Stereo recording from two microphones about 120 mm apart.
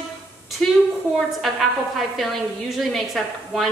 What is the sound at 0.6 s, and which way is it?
A woman's voice, 5° left (ahead or behind).